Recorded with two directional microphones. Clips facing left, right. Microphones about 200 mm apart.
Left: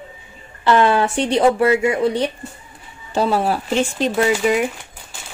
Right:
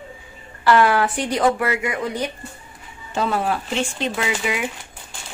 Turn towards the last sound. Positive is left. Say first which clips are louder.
# left 8 dB
turn(degrees=45)  # may be behind; listen again after turning